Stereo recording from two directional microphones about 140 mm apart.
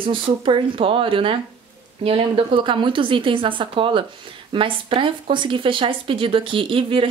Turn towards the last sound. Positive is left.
turn(degrees=-40)  # may be behind; listen again after turning